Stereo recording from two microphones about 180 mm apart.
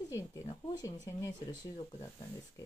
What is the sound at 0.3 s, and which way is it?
Speech, 20° left (ahead or behind).